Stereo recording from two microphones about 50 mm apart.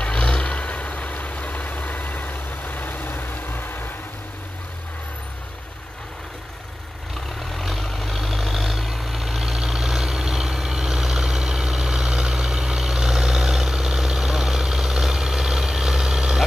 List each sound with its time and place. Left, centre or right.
0.0 s vehicle: left
7.5 s vehicle: centre